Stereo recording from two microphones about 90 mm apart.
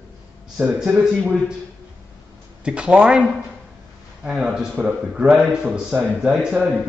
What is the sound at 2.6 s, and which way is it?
A man's voice, 10° right (ahead or behind).